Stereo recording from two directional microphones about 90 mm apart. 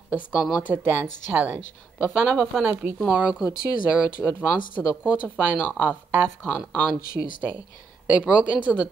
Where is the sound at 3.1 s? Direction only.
15° right (ahead or behind).